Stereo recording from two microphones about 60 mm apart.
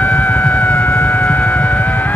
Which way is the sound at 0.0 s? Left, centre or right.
Left.